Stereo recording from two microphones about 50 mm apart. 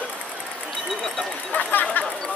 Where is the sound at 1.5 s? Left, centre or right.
Left.